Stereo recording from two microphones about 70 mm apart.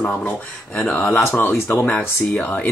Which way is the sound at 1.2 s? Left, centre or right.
Left.